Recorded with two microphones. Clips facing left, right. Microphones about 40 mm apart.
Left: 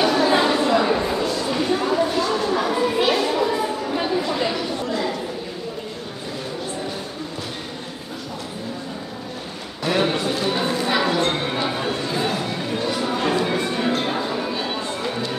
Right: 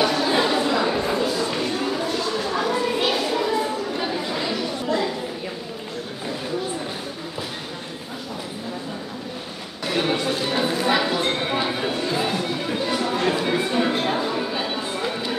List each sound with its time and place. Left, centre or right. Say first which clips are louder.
0.0 s chatter: left 3 dB; centre
1.1 s a sound: left 1 dB; centre
9.8 s music: left 2 dB; centre